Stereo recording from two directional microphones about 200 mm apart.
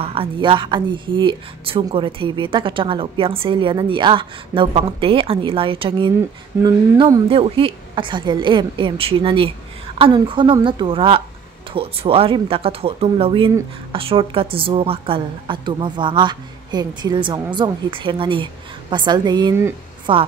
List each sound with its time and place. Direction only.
0.0 s a woman's voice: 25° right (ahead or behind)